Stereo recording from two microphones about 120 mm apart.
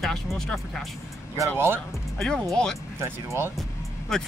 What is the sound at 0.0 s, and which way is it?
Speech, centre (ahead or behind).